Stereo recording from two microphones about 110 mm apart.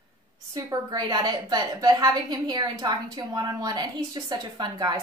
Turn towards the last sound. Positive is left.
turn(degrees=-35)  # may be behind; listen again after turning